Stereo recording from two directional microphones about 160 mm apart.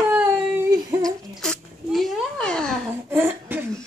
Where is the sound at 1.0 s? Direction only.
5° left (ahead or behind).